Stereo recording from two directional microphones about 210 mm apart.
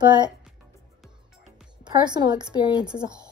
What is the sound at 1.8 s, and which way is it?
Speech, 20° right (ahead or behind).